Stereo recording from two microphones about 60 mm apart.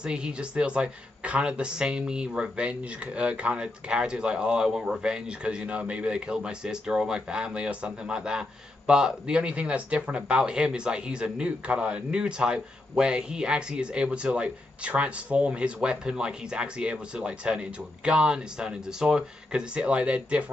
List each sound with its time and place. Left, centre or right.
0.0 s a man's voice: centre